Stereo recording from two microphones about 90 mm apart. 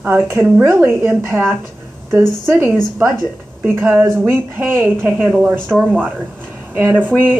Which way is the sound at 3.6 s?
20° right (ahead or behind).